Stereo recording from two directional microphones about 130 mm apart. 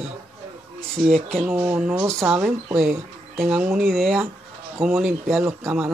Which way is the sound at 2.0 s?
20° right (ahead or behind).